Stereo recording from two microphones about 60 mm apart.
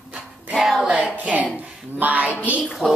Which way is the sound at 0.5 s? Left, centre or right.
Centre.